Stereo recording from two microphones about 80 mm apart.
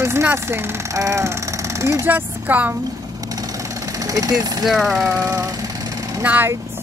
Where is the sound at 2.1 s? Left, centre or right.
Right.